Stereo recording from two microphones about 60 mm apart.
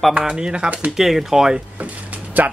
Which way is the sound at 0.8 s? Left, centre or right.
Centre.